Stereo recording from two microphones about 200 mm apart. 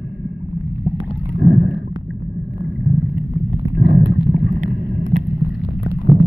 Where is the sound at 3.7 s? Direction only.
55° right (ahead or behind).